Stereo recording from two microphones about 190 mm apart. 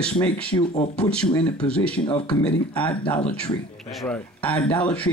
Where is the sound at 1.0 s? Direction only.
5° left (ahead or behind).